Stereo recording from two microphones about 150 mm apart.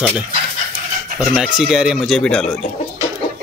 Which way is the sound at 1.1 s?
Centre (ahead or behind).